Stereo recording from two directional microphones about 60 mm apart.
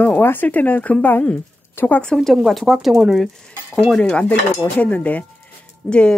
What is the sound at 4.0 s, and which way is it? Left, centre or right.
Speech, left.